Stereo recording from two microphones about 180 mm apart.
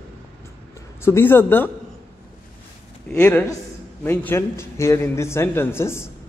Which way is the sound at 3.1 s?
10° left (ahead or behind).